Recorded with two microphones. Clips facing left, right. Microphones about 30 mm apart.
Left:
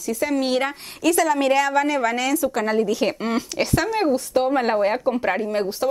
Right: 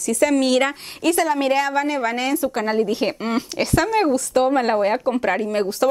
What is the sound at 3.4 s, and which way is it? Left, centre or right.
Speech, right.